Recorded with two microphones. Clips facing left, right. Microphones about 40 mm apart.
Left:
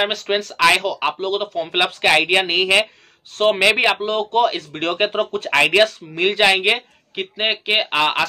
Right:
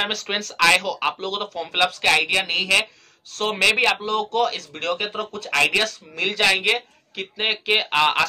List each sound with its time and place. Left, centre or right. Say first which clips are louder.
0.0 s speech: left 5 dB; centre
1.7 s speech: left 2 dB; left
2.3 s speech: left 5 dB; left
3.3 s speech: left 4 dB; centre; by 5.5 s left
5.5 s speech: left 5 dB; left; by 8.3 s centre